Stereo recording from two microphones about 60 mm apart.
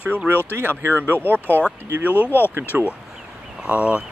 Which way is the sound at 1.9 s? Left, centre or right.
Right.